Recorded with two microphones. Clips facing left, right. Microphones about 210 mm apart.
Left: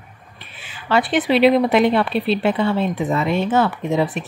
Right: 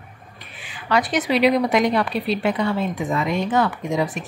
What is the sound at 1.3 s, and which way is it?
Speech, 25° left (ahead or behind).